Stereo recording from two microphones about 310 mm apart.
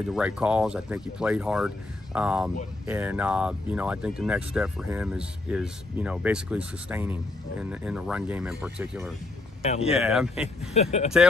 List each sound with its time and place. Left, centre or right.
0.1 s speech: centre
9.6 s speech: left
9.8 s speech: centre
10.7 s speech: left